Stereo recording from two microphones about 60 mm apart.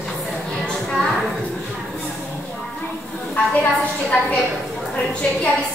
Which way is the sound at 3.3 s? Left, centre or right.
Left.